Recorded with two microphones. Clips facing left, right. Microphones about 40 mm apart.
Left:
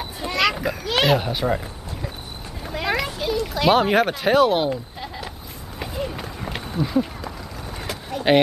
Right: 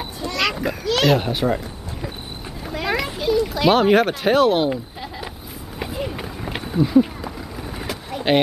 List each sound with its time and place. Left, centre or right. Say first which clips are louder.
0.4 s children playing: left 1 dB; centre
0.8 s a child's voice: right 2 dB; centre
1.1 s speech: right 1 dB; centre
2.6 s a sound: right 1 dB; centre
3.2 s speech: right 4 dB; centre
5.0 s a sound: right 1 dB; centre